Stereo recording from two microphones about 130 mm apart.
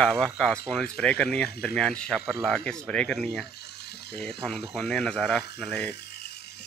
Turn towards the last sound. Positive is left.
turn(degrees=5)  # may be behind; listen again after turning